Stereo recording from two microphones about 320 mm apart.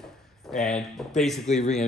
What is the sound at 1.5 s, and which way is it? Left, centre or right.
Speech, left.